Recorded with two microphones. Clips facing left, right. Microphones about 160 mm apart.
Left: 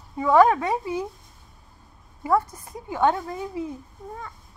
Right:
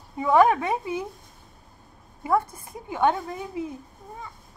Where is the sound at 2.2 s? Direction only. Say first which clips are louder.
Left 1 dB; 25° right (ahead or behind).